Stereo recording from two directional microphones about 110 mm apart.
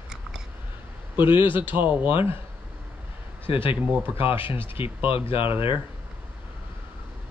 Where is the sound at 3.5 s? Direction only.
55° left (ahead or behind).